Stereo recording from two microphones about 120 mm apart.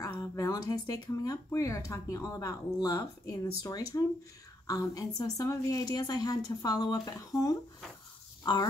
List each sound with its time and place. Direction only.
0.1 s a woman's voice: 30° left (ahead or behind)